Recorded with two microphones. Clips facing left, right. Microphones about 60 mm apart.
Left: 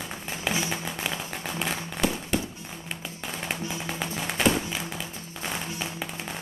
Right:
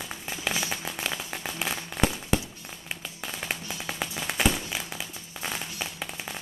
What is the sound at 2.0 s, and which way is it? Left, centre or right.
Fireworks, centre.